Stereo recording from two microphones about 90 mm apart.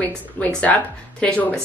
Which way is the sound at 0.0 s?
15° left (ahead or behind).